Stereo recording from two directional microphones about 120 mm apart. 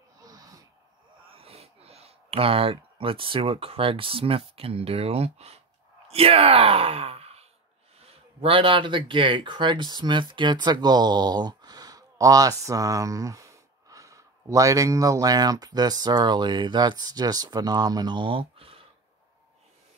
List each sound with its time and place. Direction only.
0.2 s snort: 30° right (ahead or behind)
1.3 s speech: 55° right (ahead or behind)